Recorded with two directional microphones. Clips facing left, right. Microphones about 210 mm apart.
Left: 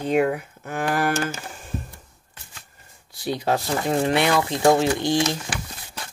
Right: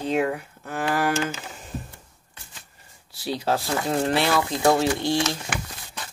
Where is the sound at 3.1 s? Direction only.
55° left (ahead or behind).